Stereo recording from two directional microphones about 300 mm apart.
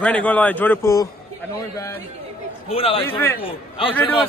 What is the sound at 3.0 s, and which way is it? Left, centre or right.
Speech, centre.